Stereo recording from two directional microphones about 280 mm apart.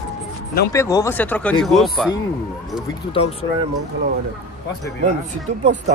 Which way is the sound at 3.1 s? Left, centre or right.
Centre.